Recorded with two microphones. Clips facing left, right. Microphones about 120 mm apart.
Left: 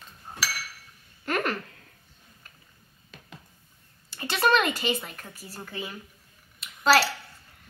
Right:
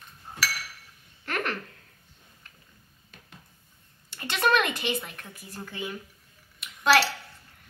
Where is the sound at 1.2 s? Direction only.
10° left (ahead or behind).